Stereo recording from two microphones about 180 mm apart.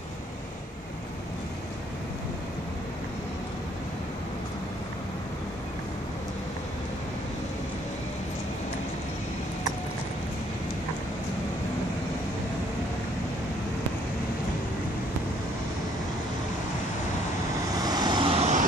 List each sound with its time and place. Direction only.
17.8 s vehicle: 20° right (ahead or behind); by 18.7 s 40° right (ahead or behind)